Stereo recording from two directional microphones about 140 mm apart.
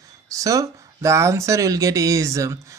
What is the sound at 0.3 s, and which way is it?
Speech, 25° right (ahead or behind).